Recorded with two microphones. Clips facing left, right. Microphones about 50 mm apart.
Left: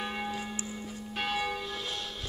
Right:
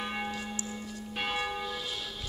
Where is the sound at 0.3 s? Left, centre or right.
Centre.